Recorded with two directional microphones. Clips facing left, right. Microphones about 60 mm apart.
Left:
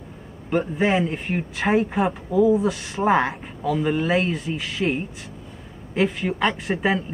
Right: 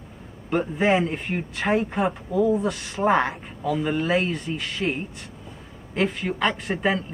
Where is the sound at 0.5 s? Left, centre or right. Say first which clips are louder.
Even; centre.